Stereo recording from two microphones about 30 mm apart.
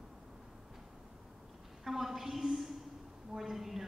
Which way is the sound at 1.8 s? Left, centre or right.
Centre.